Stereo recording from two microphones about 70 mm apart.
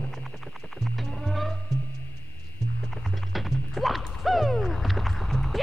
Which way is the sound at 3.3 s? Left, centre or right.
Centre.